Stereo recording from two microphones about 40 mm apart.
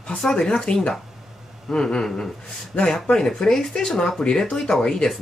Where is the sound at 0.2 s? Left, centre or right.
Centre.